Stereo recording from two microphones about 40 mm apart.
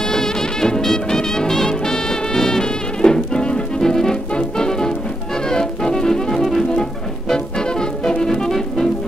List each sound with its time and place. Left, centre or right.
0.0 s music: centre
6.7 s music: centre